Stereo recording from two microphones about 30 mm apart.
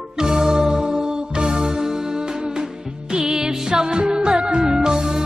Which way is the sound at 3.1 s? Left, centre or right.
Centre.